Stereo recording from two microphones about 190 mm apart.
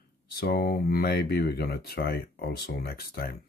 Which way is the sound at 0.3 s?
55° left (ahead or behind).